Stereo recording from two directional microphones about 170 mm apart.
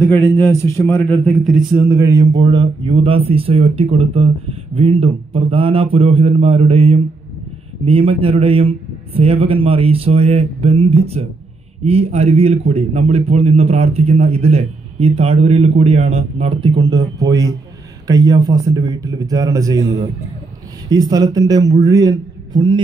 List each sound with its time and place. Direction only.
0.0 s a man's voice: 15° left (ahead or behind); by 22.8 s 25° right (ahead or behind)